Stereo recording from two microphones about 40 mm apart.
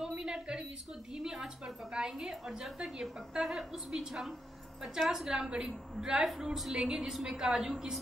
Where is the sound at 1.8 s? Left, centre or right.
Right.